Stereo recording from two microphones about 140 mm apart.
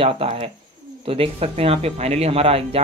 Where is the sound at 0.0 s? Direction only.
45° right (ahead or behind).